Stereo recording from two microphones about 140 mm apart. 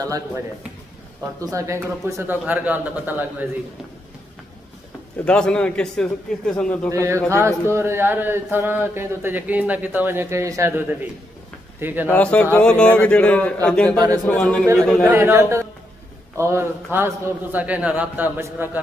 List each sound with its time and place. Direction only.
0.0 s a man's voice: 25° right (ahead or behind)
5.2 s a man's voice: 5° left (ahead or behind)
6.9 s a man's voice: 20° right (ahead or behind)
12.1 s a man's voice: 10° left (ahead or behind)
13.9 s a man's voice: 25° right (ahead or behind)
14.2 s a man's voice: 5° left (ahead or behind)
15.0 s a man's voice: 15° right (ahead or behind)